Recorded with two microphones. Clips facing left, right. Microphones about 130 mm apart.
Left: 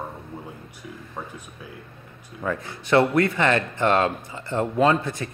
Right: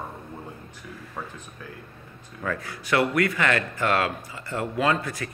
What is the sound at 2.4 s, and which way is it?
A man's voice, 20° left (ahead or behind).